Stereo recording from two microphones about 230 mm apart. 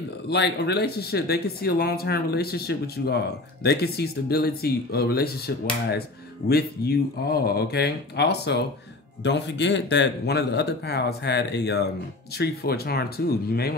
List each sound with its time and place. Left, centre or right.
0.3 s speech: left